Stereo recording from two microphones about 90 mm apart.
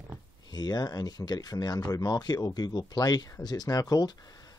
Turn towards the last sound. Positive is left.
turn(degrees=45)  # may be behind; listen again after turning